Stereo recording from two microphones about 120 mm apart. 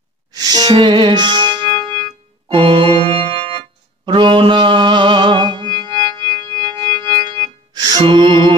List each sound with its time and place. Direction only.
0.3 s music: 35° right (ahead or behind)
4.0 s music: 40° right (ahead or behind)
8.0 s mantra: 45° right (ahead or behind)